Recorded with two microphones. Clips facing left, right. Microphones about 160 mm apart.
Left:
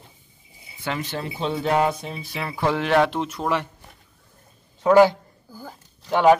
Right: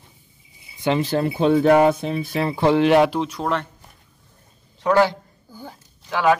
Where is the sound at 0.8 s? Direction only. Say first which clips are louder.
Right 8 dB; 20° right (ahead or behind).